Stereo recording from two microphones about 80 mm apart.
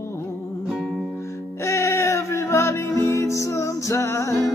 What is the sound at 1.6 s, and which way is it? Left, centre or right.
Music, left.